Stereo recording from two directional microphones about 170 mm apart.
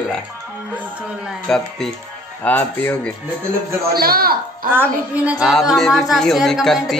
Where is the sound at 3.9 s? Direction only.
65° right (ahead or behind).